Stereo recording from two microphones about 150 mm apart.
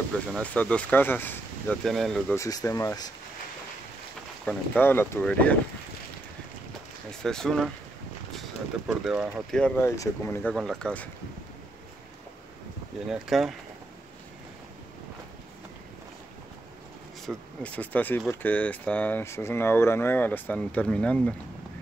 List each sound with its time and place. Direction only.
0.4 s speech: 10° left (ahead or behind)
1.9 s speech: centre (ahead or behind)
2.3 s speech: 20° left (ahead or behind)
4.5 s speech: 15° left (ahead or behind)
7.1 s speech: 5° left (ahead or behind)
9.6 s speech: 5° left (ahead or behind)
9.8 s speech: 15° left (ahead or behind)
10.5 s speech: centre (ahead or behind)
13.1 s speech: centre (ahead or behind)
17.3 s speech: 10° left (ahead or behind)